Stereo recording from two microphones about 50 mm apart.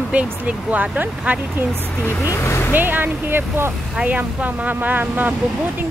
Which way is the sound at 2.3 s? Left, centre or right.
Left.